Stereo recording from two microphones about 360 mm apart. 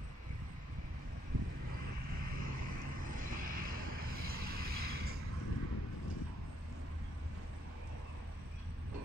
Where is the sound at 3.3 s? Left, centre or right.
Right.